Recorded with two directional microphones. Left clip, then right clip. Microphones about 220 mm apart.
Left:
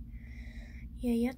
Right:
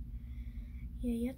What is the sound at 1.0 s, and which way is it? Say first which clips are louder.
Speech: left 6 dB; 20° left (ahead or behind).